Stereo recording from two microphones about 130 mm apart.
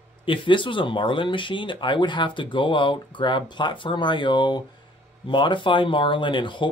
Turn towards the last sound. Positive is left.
turn(degrees=40)  # may be behind; listen again after turning